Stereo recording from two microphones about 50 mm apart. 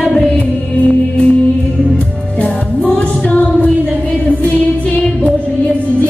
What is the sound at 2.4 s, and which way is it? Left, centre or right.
Music, left.